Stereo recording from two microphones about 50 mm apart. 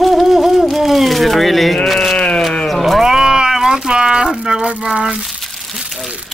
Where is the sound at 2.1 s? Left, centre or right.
Left.